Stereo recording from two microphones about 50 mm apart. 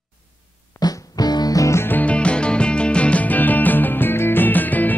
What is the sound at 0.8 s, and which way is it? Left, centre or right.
Music, left.